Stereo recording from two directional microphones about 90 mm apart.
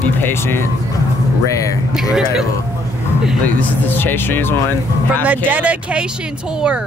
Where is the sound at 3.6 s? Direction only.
20° left (ahead or behind).